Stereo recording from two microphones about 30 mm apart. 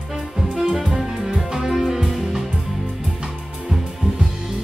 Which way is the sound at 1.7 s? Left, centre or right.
Centre.